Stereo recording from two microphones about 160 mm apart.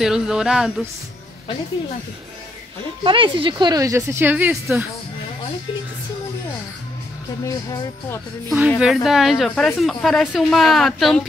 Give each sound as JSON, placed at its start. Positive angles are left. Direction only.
{"t": 0.0, "sound": "speech", "side_deg": -5}
{"t": 3.0, "sound": "speech", "side_deg": -35}
{"t": 7.4, "sound": "speech", "side_deg": 20}
{"t": 8.6, "sound": "speech", "side_deg": -5}